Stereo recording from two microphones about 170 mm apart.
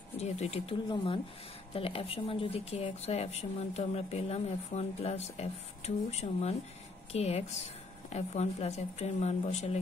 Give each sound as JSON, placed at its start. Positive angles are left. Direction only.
{"t": 0.2, "sound": "speech", "side_deg": 40}
{"t": 0.8, "sound": "speech", "side_deg": 30}